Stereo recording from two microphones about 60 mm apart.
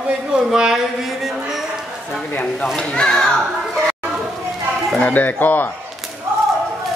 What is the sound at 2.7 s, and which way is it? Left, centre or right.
Speech, centre.